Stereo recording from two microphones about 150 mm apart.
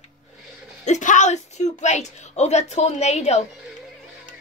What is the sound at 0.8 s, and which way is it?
A woman's voice, 55° left (ahead or behind).